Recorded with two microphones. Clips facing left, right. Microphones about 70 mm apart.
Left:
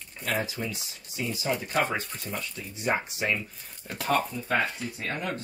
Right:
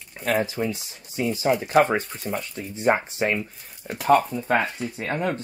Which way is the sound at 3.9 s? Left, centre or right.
Right.